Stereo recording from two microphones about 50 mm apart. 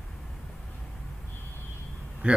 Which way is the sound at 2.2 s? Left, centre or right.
Right.